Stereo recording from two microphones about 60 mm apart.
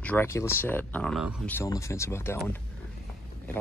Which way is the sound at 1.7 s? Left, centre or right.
Left.